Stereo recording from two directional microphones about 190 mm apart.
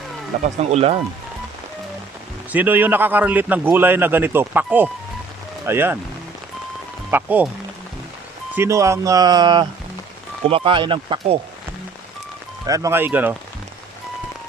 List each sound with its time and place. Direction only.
0.4 s speech: 35° right (ahead or behind)
2.5 s a man's voice: 10° right (ahead or behind)
7.1 s a man's voice: 10° right (ahead or behind)
8.5 s a man's voice: 15° right (ahead or behind)
12.6 s a man's voice: 15° right (ahead or behind)